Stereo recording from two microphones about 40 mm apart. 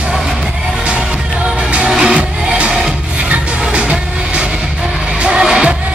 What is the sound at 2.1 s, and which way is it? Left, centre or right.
Music, right.